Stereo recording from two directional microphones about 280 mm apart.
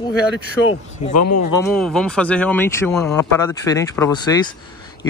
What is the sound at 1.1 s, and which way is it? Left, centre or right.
Speech, left.